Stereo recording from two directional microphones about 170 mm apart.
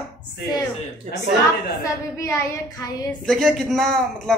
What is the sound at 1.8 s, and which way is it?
Speech, 20° left (ahead or behind).